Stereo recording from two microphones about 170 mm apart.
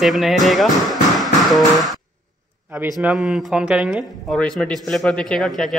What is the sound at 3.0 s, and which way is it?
Speech, 5° right (ahead or behind).